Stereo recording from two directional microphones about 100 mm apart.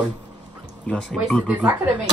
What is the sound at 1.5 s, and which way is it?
Speech, 15° right (ahead or behind).